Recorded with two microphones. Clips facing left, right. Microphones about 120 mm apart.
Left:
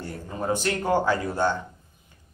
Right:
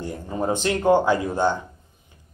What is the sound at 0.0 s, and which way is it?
Speech, 20° right (ahead or behind).